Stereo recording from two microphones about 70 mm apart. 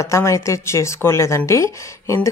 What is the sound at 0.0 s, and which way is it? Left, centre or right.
A woman's voice, left.